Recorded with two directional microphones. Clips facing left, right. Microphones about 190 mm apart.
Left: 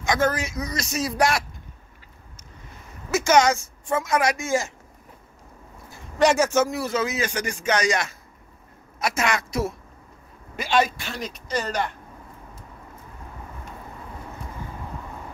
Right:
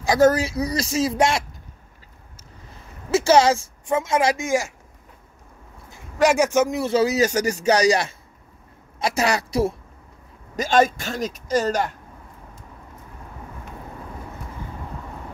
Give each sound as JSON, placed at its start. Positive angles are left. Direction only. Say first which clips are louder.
{"t": 0.0, "sound": "speech", "louder": "right 6 dB", "side_deg": -35}
{"t": 3.1, "sound": "a sound", "louder": "right 3 dB", "side_deg": -30}
{"t": 4.0, "sound": "speech", "louder": "right 2 dB", "side_deg": -25}
{"t": 4.5, "sound": "speech", "louder": "right 2 dB", "side_deg": -10}
{"t": 6.1, "sound": "speech", "louder": "right 1 dB", "side_deg": -10}
{"t": 6.9, "sound": "speech", "louder": "right 7 dB", "side_deg": -35}
{"t": 10.5, "sound": "speech", "louder": "right 4 dB", "side_deg": -45}